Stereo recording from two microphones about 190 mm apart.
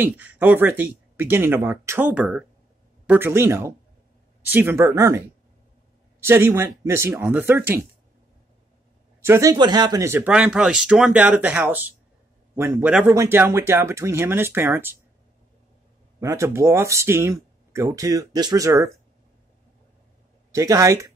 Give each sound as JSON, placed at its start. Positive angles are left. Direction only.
{"t": 0.0, "sound": "speech", "side_deg": -10}
{"t": 6.2, "sound": "speech", "side_deg": -15}
{"t": 9.2, "sound": "speech", "side_deg": -15}
{"t": 16.2, "sound": "speech", "side_deg": -15}
{"t": 20.5, "sound": "speech", "side_deg": -15}